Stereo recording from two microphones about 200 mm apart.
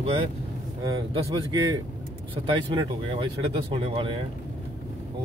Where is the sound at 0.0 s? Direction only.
30° right (ahead or behind).